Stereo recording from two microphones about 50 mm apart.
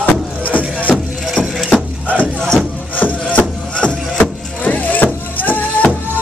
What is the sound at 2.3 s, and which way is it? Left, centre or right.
Crowd, centre.